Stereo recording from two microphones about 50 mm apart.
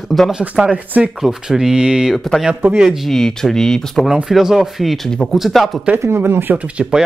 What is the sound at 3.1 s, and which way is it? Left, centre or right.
Speech, centre.